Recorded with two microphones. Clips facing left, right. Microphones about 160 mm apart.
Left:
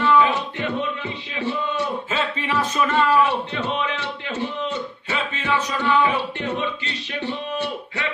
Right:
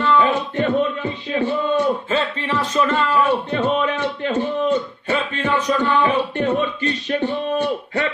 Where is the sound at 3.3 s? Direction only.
50° right (ahead or behind).